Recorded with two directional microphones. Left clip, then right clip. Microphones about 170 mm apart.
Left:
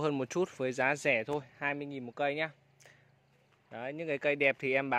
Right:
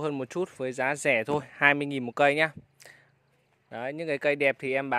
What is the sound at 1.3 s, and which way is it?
Speech, 45° right (ahead or behind).